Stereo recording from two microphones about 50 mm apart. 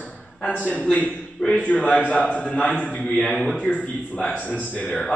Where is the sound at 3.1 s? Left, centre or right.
Centre.